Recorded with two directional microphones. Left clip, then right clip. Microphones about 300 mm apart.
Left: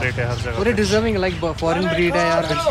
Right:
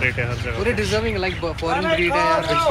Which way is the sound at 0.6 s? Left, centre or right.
Left.